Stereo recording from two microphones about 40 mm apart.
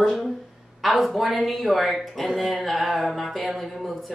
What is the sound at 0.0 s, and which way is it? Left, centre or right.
Speech, centre.